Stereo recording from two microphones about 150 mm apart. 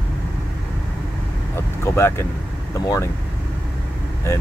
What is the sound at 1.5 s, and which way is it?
Speech, 15° left (ahead or behind).